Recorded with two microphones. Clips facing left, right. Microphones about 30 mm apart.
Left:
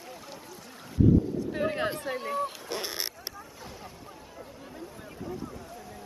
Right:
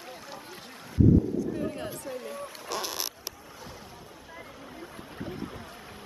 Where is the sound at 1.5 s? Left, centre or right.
Left.